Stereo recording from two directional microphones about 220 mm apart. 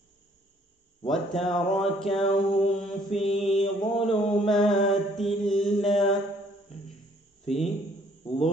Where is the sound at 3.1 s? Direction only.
30° left (ahead or behind).